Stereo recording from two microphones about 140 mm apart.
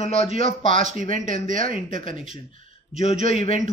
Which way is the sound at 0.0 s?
45° left (ahead or behind).